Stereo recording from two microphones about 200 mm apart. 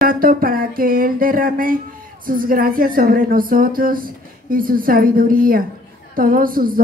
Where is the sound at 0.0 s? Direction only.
45° right (ahead or behind).